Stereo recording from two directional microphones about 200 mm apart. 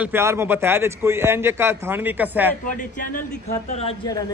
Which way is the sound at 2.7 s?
40° left (ahead or behind).